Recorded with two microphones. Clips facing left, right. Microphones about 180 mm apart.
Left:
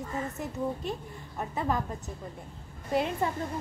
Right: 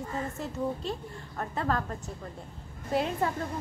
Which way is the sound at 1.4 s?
15° left (ahead or behind).